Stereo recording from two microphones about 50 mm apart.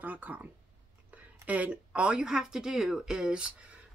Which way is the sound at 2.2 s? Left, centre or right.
Centre.